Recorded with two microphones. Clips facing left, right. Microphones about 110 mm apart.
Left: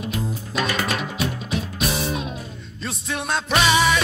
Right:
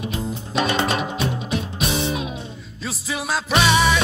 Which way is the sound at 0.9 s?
Centre (ahead or behind).